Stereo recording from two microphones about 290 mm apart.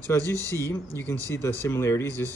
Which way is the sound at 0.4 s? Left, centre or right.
Centre.